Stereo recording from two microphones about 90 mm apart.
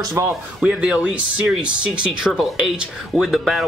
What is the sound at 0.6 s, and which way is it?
Speech, 10° right (ahead or behind).